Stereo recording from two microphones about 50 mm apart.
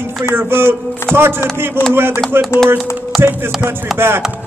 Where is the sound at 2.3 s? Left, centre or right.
Right.